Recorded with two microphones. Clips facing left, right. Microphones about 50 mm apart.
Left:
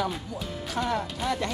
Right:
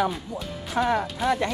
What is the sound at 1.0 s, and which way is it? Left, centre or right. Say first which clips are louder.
Speech: right 5 dB; centre.